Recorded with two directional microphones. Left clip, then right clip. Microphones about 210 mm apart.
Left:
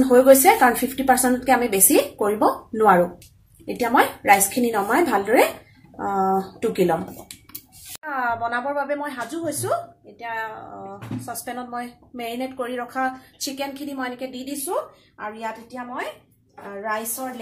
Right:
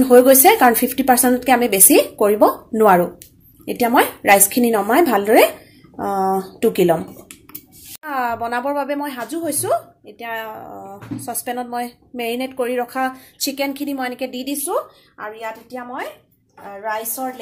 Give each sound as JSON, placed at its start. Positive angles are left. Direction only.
{"t": 0.1, "sound": "a woman's voice", "side_deg": -35}
{"t": 8.0, "sound": "a woman's voice", "side_deg": -40}